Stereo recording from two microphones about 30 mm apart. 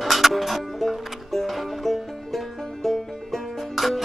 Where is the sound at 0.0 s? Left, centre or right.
Centre.